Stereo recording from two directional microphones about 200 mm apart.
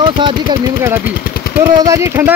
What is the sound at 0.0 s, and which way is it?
Speech, 25° right (ahead or behind).